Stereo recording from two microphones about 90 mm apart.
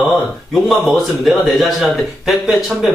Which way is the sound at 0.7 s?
Centre (ahead or behind).